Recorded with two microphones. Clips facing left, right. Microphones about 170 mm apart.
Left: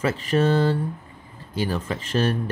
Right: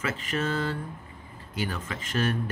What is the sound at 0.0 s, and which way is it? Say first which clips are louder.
Speech: left 9 dB; 35° left (ahead or behind).